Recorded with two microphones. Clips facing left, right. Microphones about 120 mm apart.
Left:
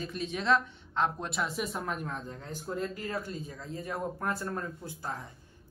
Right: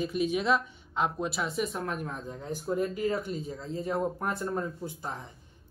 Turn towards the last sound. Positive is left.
turn(degrees=-20)  # may be behind; listen again after turning